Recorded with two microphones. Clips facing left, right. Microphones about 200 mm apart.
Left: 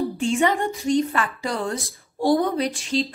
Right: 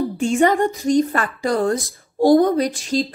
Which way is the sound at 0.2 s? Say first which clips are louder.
Right 6 dB; 45° right (ahead or behind).